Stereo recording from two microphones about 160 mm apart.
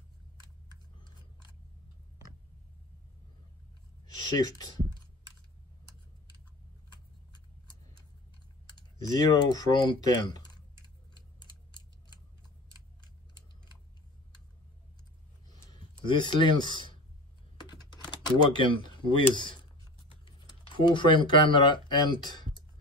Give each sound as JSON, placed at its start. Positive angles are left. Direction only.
{"t": 4.1, "sound": "speech", "side_deg": 25}
{"t": 8.7, "sound": "speech", "side_deg": 25}
{"t": 11.1, "sound": "a sound", "side_deg": 25}
{"t": 15.7, "sound": "speech", "side_deg": 30}
{"t": 17.6, "sound": "typing", "side_deg": 25}
{"t": 20.9, "sound": "speech", "side_deg": 30}